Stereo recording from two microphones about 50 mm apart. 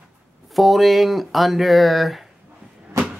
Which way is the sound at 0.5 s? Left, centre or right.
Centre.